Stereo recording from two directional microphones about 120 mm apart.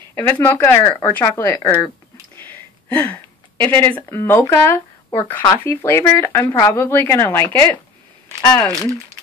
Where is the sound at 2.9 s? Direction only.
15° left (ahead or behind).